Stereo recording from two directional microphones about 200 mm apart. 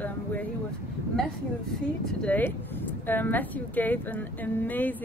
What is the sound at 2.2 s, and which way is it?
Speech, 10° left (ahead or behind).